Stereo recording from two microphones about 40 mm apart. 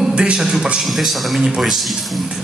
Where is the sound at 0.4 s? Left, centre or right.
Centre.